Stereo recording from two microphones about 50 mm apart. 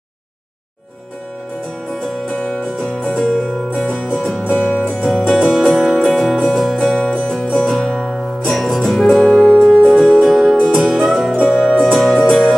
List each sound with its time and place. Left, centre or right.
1.9 s music: centre